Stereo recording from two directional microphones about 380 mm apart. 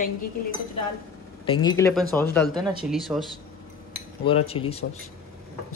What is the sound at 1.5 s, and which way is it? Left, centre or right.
Speech, centre.